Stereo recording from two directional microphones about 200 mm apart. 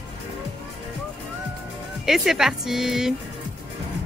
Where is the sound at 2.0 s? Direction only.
Centre (ahead or behind).